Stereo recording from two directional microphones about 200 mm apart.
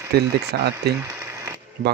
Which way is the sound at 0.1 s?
55° right (ahead or behind).